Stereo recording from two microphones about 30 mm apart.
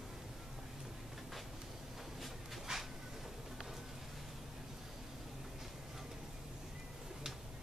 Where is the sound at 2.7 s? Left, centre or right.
Right.